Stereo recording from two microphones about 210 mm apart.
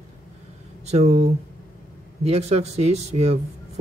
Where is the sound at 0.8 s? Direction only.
30° right (ahead or behind).